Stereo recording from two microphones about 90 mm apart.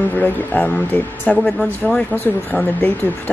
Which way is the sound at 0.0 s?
20° left (ahead or behind).